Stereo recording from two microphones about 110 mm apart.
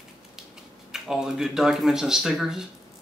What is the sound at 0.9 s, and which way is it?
Speech, 5° right (ahead or behind).